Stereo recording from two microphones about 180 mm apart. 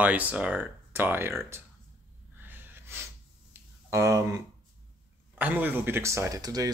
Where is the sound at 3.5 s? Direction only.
15° right (ahead or behind).